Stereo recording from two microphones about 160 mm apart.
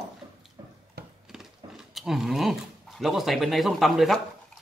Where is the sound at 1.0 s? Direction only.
90° right.